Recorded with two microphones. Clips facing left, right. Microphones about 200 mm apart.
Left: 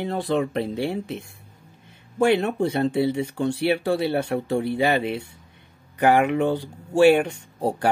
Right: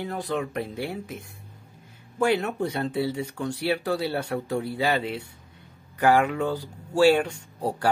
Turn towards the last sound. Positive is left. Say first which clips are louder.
# left 4 dB
turn(degrees=25)  # may be behind; listen again after turning